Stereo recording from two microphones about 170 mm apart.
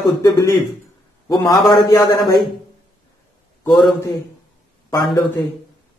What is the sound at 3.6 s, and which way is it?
Speech, 20° left (ahead or behind).